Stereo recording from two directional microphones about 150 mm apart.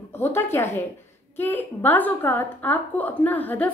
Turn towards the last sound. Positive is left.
turn(degrees=10)  # may be behind; listen again after turning